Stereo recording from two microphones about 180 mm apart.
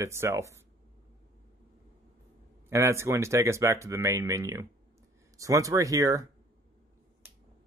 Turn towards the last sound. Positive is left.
turn(degrees=-20)  # may be behind; listen again after turning